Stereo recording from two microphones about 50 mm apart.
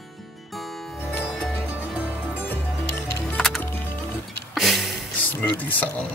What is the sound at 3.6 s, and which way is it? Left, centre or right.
Music, left.